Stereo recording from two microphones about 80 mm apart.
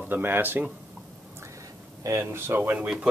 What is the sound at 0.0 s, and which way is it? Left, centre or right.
Speech, right.